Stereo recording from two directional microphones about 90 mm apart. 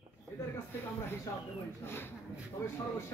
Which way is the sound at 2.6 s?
30° left (ahead or behind).